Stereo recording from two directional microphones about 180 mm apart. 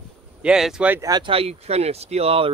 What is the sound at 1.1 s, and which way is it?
Speech, 25° right (ahead or behind).